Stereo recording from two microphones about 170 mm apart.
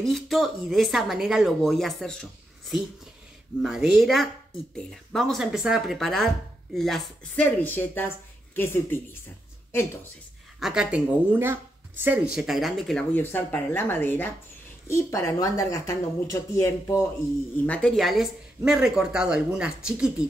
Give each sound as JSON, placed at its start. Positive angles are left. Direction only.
{"t": 0.0, "sound": "speech", "side_deg": 0}
{"t": 3.6, "sound": "speech", "side_deg": -5}
{"t": 10.6, "sound": "speech", "side_deg": -5}
{"t": 17.6, "sound": "speech", "side_deg": 5}